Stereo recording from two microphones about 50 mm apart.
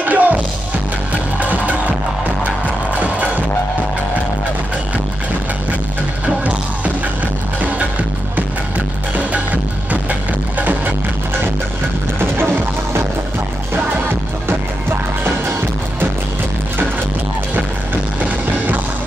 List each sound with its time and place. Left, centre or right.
0.0 s music: right
1.4 s music: right
6.2 s music: right
9.1 s music: right
12.2 s music: right
14.5 s music: right